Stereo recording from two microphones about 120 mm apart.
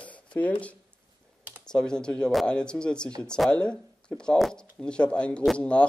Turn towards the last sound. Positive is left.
turn(degrees=10)  # may be behind; listen again after turning